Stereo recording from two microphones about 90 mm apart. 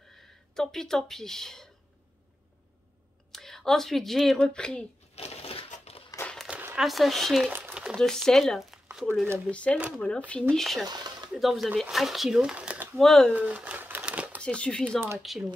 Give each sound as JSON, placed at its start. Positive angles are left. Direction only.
{"t": 0.6, "sound": "speech", "side_deg": 5}
{"t": 3.3, "sound": "speech", "side_deg": 5}
{"t": 5.4, "sound": "crushing", "side_deg": 90}
{"t": 6.7, "sound": "speech", "side_deg": 0}
{"t": 9.5, "sound": "speech", "side_deg": 15}
{"t": 10.5, "sound": "speech", "side_deg": 0}
{"t": 10.9, "sound": "a sound", "side_deg": -50}
{"t": 11.3, "sound": "speech", "side_deg": 0}
{"t": 12.9, "sound": "speech", "side_deg": 5}
{"t": 13.3, "sound": "speech", "side_deg": -15}
{"t": 13.7, "sound": "crumpling", "side_deg": -20}
{"t": 14.4, "sound": "speech", "side_deg": 10}
{"t": 14.9, "sound": "speech", "side_deg": -25}
{"t": 15.2, "sound": "speech", "side_deg": 0}